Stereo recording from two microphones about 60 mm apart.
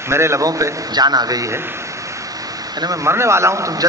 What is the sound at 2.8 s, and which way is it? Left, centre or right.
Speech, right.